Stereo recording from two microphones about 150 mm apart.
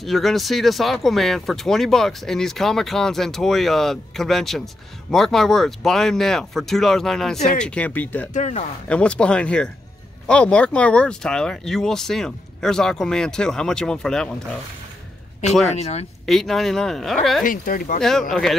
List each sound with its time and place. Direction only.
0.0 s speech: centre (ahead or behind)
8.3 s speech: 50° left (ahead or behind)
8.8 s speech: 5° left (ahead or behind)
15.7 s speech: 45° left (ahead or behind)
16.3 s speech: centre (ahead or behind)
17.5 s speech: 65° left (ahead or behind)
18.3 s speech: centre (ahead or behind)